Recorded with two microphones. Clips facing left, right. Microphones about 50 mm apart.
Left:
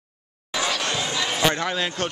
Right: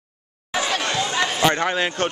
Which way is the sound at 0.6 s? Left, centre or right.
Right.